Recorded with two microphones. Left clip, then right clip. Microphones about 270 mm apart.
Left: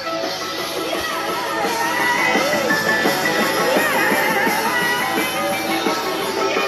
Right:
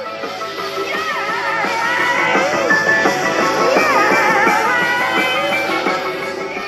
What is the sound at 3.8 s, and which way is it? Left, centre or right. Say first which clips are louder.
Music: right 4 dB; right.